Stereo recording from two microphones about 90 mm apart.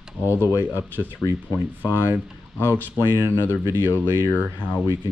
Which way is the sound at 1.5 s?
20° right (ahead or behind).